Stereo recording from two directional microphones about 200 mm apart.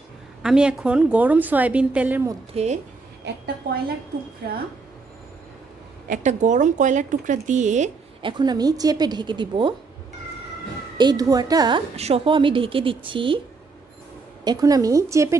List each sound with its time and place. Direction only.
0.4 s a woman's voice: 5° right (ahead or behind)
2.5 s speech: 35° right (ahead or behind)
6.0 s speech: 40° right (ahead or behind)
8.2 s a woman's voice: 25° right (ahead or behind)
11.0 s a woman's voice: 20° right (ahead or behind)
14.4 s a woman's voice: 20° right (ahead or behind)